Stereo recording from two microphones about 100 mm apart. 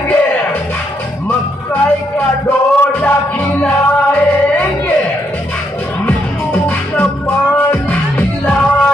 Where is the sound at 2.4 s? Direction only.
20° left (ahead or behind).